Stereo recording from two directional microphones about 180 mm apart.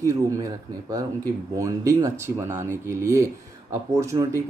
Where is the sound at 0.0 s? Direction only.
15° right (ahead or behind).